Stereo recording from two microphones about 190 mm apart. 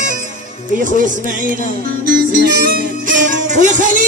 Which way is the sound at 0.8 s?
45° right (ahead or behind).